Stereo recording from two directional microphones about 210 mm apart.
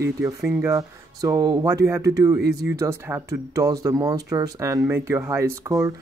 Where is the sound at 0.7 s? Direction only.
15° right (ahead or behind).